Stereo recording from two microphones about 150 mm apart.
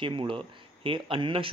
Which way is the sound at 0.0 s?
35° right (ahead or behind).